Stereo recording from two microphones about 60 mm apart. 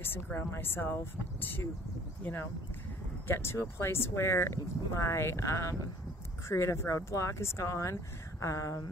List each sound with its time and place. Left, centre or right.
0.0 s speech: left
3.3 s speech: left